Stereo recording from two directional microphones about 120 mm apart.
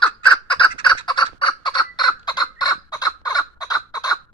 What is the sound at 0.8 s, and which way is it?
Fowl, 40° left (ahead or behind).